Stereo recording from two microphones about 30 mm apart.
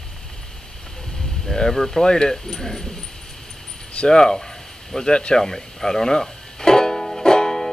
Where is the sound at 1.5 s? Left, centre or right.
Left.